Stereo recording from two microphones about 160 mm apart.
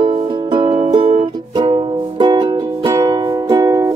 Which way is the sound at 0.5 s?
30° right (ahead or behind).